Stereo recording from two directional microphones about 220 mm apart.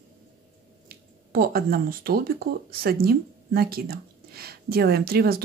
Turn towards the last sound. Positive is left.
turn(degrees=-45)  # may be behind; listen again after turning